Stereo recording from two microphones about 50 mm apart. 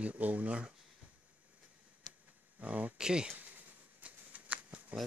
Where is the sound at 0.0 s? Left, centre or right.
Right.